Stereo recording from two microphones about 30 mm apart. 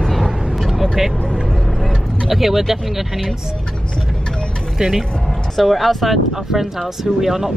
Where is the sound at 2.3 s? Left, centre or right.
Centre.